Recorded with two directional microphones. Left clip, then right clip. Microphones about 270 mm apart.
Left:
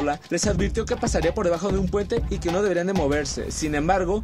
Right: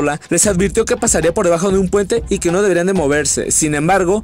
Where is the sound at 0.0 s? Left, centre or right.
Right.